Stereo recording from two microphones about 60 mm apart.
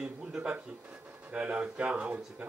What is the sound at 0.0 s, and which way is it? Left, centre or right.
Speech, centre.